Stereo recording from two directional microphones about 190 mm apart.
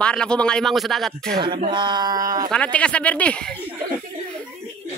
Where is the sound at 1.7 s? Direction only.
25° right (ahead or behind).